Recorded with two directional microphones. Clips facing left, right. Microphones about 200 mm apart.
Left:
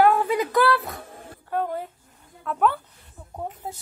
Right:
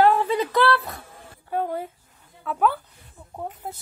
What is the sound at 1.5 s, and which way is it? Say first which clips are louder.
A woman's voice: right 1 dB; 10° right (ahead or behind).